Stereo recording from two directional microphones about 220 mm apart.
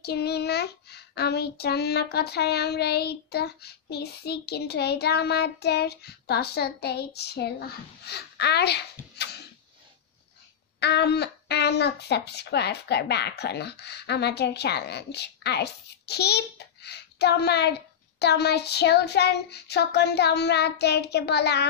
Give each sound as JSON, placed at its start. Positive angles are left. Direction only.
{"t": 0.0, "sound": "speech", "side_deg": 45}
{"t": 10.8, "sound": "speech", "side_deg": 50}